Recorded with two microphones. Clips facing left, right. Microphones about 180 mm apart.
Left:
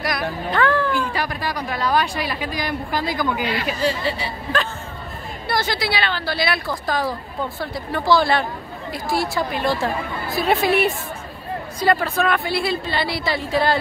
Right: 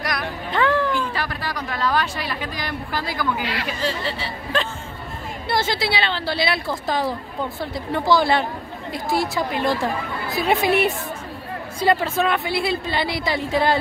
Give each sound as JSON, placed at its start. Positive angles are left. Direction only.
{"t": 0.5, "sound": "a sound", "side_deg": -20}
{"t": 0.9, "sound": "speech", "side_deg": 15}
{"t": 5.5, "sound": "a woman's voice", "side_deg": -25}